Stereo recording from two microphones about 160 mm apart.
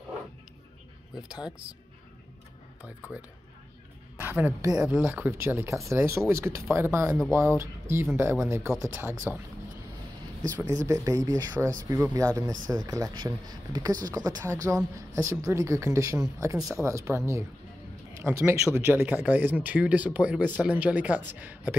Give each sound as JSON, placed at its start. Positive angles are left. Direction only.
{"t": 2.8, "sound": "a woman's voice", "side_deg": -10}
{"t": 10.6, "sound": "speech", "side_deg": -20}